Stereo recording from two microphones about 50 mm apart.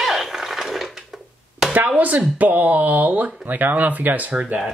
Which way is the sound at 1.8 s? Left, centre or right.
Right.